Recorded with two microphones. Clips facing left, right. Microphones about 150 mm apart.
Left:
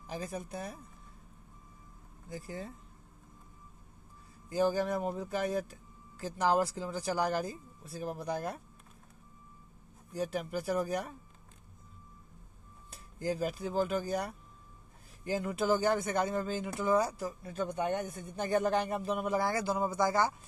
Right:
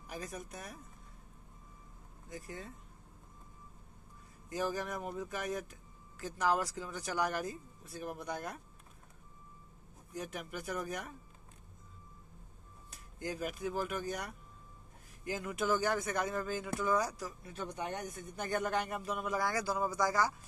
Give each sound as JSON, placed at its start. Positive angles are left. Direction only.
{"t": 0.0, "sound": "speech", "side_deg": 30}
{"t": 2.2, "sound": "speech", "side_deg": 30}
{"t": 4.5, "sound": "speech", "side_deg": 30}
{"t": 10.1, "sound": "speech", "side_deg": 30}
{"t": 12.9, "sound": "speech", "side_deg": 30}